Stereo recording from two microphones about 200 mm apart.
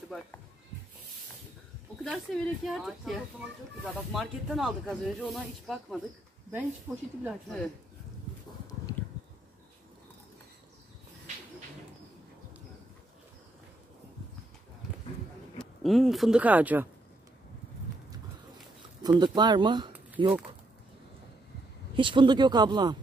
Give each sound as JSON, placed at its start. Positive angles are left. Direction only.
{"t": 2.0, "sound": "speech", "side_deg": 0}
{"t": 6.9, "sound": "speech", "side_deg": -10}
{"t": 7.2, "sound": "speech", "side_deg": 0}
{"t": 15.6, "sound": "speech", "side_deg": 0}
{"t": 19.0, "sound": "speech", "side_deg": -20}
{"t": 21.9, "sound": "speech", "side_deg": -25}